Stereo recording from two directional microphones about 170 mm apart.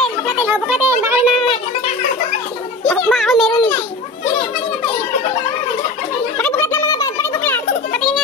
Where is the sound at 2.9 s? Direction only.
Centre (ahead or behind).